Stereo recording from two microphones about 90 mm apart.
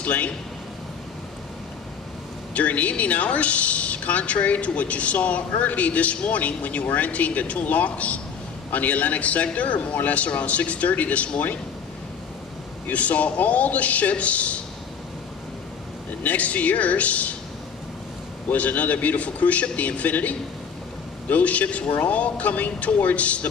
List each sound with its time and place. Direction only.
0.0 s a man's voice: 15° left (ahead or behind)
2.5 s speech: 15° left (ahead or behind)
12.8 s speech: 15° left (ahead or behind)
16.2 s speech: 15° left (ahead or behind)
18.5 s speech: 15° left (ahead or behind)